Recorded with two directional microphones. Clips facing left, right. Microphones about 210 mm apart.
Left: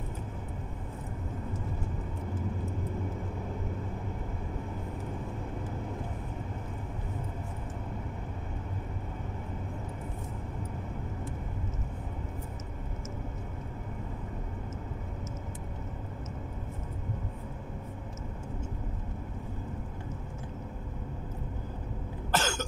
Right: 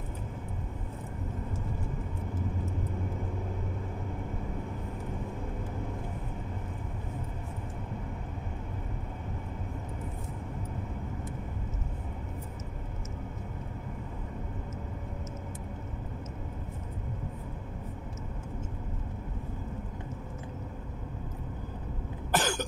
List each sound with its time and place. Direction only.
22.3 s cough: 15° right (ahead or behind)